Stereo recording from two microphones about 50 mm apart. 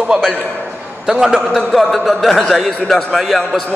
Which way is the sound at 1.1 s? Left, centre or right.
Centre.